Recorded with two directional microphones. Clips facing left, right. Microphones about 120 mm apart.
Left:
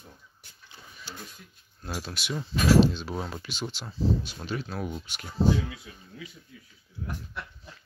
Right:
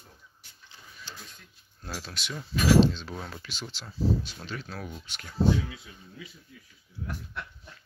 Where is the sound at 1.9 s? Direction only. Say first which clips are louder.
Left 4 dB; 15° left (ahead or behind).